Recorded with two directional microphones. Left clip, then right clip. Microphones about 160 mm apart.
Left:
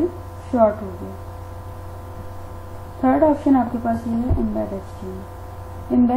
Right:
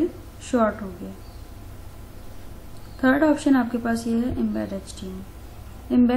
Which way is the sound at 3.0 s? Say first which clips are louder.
Left 3 dB; 30° right (ahead or behind).